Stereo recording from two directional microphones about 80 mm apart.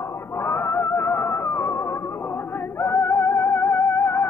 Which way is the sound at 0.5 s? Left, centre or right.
Left.